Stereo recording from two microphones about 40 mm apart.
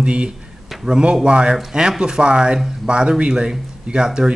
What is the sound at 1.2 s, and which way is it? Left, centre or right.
Speech, right.